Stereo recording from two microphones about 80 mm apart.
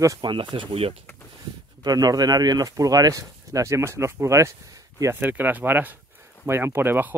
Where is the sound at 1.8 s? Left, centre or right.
Right.